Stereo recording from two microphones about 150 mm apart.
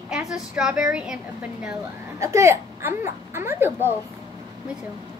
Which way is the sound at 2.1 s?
20° right (ahead or behind).